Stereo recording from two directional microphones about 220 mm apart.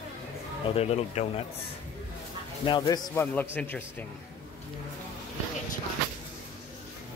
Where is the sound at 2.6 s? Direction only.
20° left (ahead or behind).